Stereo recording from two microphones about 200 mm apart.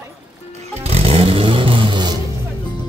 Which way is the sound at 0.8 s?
30° right (ahead or behind).